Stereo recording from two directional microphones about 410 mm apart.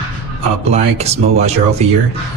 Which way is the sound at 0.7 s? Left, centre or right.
Centre.